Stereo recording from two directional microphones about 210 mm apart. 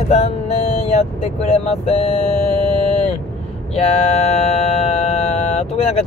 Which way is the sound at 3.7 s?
30° left (ahead or behind).